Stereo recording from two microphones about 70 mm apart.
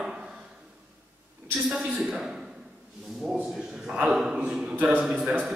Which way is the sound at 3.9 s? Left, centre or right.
Centre.